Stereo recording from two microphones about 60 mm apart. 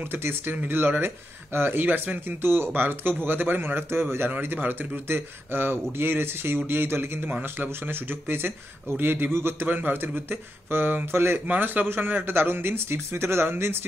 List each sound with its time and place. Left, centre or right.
0.0 s speech: right